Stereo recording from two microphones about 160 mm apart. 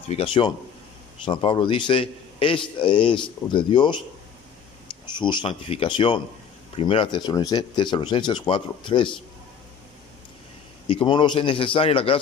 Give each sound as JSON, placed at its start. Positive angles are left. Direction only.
{"t": 0.1, "sound": "a man's voice", "side_deg": 35}
{"t": 5.2, "sound": "a man's voice", "side_deg": 30}
{"t": 10.9, "sound": "a man's voice", "side_deg": 30}